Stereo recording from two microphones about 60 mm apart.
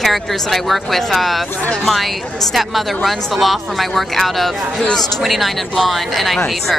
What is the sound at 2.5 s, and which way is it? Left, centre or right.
A woman's voice, centre.